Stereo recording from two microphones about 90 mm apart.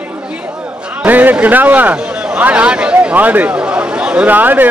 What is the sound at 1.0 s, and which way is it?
A man's voice, 20° right (ahead or behind).